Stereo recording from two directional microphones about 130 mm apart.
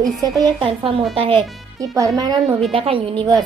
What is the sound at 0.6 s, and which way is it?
Speech, 40° right (ahead or behind).